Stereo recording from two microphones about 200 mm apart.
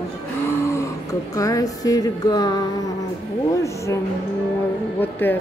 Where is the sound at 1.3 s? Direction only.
15° left (ahead or behind).